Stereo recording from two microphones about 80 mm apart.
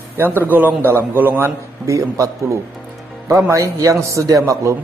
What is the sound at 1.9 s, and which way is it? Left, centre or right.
A man's voice, right.